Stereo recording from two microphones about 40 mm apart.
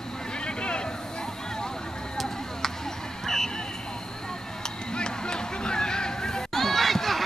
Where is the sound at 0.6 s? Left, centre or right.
Left.